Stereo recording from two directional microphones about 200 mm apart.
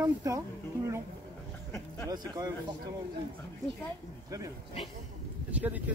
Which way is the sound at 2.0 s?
20° right (ahead or behind).